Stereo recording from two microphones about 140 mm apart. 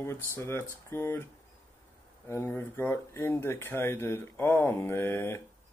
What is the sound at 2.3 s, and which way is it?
Speech, 20° left (ahead or behind).